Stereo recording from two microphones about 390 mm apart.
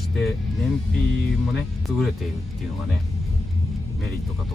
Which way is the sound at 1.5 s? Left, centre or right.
Centre.